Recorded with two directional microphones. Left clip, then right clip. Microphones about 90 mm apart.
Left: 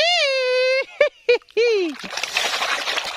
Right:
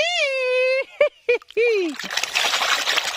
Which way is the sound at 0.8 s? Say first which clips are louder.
Left 1 dB; 15° left (ahead or behind).